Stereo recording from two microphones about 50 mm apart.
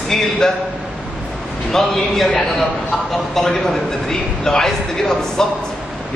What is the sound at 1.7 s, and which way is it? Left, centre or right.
Speech, centre.